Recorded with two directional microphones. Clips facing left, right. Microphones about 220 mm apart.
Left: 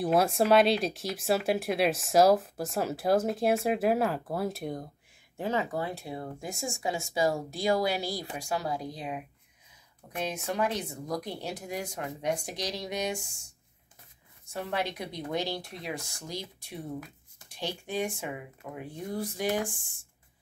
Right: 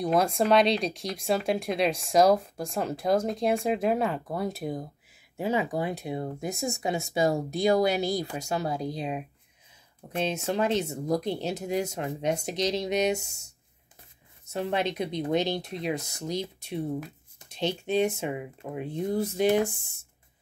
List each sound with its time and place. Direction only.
0.0 s speech: 5° left (ahead or behind); by 20.1 s 20° right (ahead or behind)